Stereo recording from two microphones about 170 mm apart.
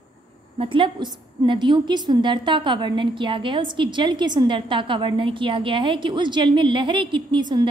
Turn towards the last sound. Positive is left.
turn(degrees=-25)  # may be behind; listen again after turning